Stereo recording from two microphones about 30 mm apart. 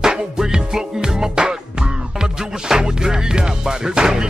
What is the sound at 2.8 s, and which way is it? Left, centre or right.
Music, right.